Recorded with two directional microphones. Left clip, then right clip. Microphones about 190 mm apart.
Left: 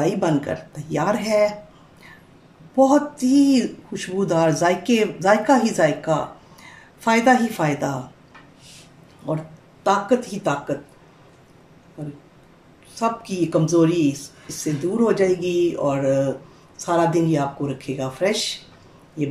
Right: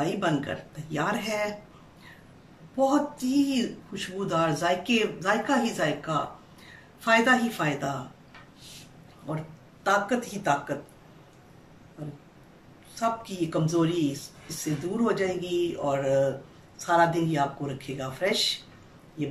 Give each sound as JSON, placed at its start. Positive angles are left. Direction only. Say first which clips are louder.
{"t": 0.0, "sound": "speech", "louder": "left 7 dB", "side_deg": 30}
{"t": 2.8, "sound": "speech", "louder": "left 8 dB", "side_deg": 30}
{"t": 9.8, "sound": "speech", "louder": "left 6 dB", "side_deg": 25}
{"t": 12.9, "sound": "speech", "louder": "left 5 dB", "side_deg": 30}